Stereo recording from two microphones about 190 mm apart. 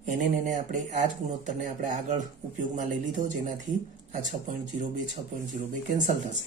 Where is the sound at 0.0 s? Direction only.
40° right (ahead or behind).